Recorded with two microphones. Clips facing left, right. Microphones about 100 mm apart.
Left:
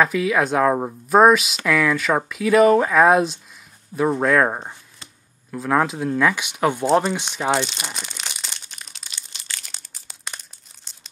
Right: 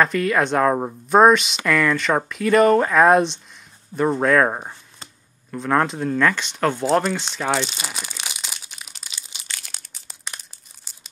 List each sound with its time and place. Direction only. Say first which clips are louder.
0.0 s speech: even; 5° left (ahead or behind)
7.6 s crumpling: even; 5° right (ahead or behind)
10.9 s tearing: even; 5° right (ahead or behind)